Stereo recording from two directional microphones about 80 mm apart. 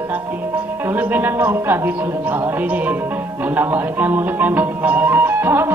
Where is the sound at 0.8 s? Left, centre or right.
Right.